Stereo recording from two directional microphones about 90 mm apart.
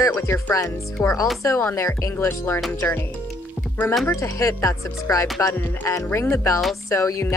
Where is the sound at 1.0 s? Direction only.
30° left (ahead or behind).